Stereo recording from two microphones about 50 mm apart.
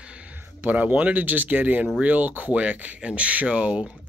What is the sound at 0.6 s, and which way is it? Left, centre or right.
Speech, right.